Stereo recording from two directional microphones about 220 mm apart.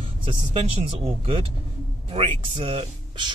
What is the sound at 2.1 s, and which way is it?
Speech, 25° right (ahead or behind).